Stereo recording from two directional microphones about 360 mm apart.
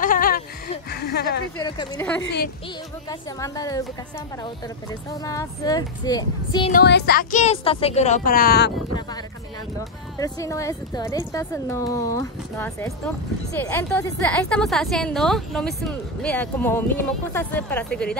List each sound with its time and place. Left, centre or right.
0.0 s a sound: left
0.8 s speech: left
1.6 s speech: centre
2.2 s speech: left
3.1 s speech: centre
5.1 s speech: centre
6.7 s speech: left
9.8 s a woman's voice: centre